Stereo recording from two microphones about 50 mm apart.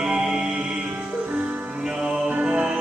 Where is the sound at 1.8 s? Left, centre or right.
Centre.